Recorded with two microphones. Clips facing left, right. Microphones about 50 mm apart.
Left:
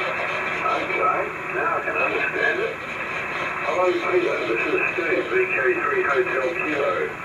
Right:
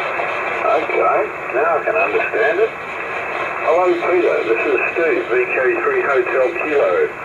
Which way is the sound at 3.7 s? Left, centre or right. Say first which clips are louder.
Right 7 dB; centre.